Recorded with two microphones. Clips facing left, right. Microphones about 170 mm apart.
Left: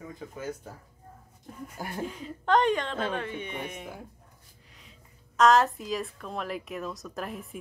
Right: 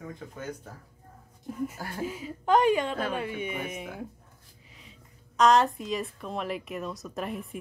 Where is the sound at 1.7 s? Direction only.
20° left (ahead or behind).